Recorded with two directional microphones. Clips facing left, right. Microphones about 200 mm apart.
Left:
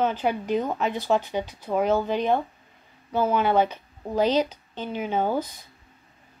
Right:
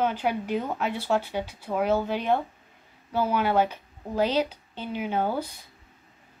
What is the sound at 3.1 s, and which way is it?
Speech, 50° left (ahead or behind).